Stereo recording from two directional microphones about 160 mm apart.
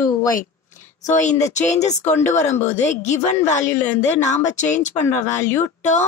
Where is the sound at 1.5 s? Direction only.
45° left (ahead or behind).